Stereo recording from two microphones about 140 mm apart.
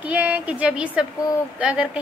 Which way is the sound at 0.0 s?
10° right (ahead or behind).